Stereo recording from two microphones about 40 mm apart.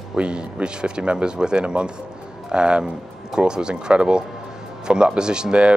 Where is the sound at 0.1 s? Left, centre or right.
Right.